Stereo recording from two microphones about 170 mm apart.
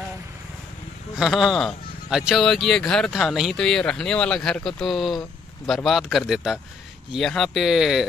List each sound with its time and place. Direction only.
1.1 s speech: centre (ahead or behind)